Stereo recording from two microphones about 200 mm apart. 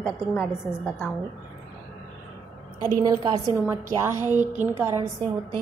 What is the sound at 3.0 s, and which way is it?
A woman's voice, 20° right (ahead or behind).